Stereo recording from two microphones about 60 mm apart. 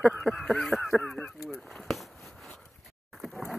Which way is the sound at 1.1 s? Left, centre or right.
Centre.